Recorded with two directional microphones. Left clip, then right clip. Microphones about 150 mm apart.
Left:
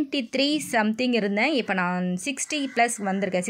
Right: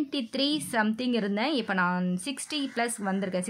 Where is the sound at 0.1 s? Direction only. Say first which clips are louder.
Left 4 dB; 20° left (ahead or behind).